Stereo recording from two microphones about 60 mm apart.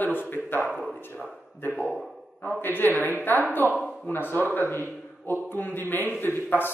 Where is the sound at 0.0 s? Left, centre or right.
Left.